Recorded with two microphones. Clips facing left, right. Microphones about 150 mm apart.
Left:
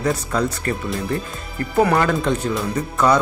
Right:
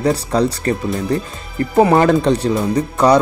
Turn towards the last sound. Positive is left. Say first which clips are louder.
# right 5 dB
turn(degrees=-35)  # may be behind; listen again after turning